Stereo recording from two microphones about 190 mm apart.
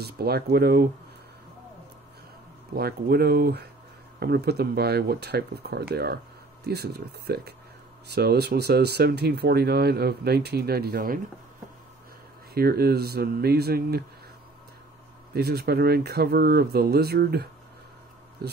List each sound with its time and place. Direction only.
0.0 s speech: 55° right (ahead or behind)
2.7 s speech: 55° right (ahead or behind)
12.5 s speech: 55° right (ahead or behind)
15.3 s speech: 55° right (ahead or behind)